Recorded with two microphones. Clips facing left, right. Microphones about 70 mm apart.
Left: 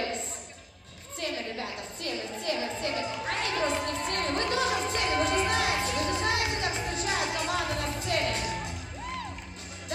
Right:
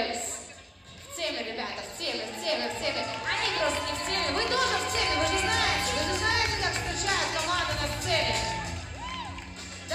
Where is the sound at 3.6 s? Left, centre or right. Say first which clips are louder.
Even; left.